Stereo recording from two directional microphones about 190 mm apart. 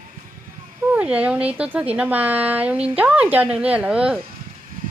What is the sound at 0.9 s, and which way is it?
Speech, 5° right (ahead or behind).